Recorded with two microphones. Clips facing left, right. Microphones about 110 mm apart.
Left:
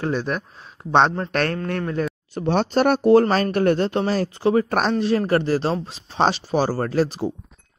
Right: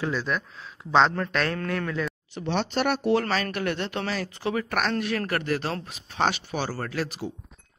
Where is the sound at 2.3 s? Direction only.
45° left (ahead or behind).